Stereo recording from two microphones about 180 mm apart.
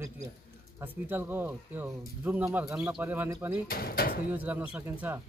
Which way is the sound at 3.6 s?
55° left (ahead or behind).